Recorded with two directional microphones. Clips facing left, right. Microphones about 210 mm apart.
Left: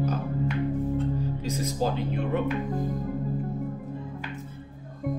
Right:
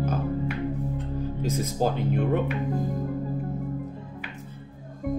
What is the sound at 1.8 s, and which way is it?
Speech, 50° right (ahead or behind).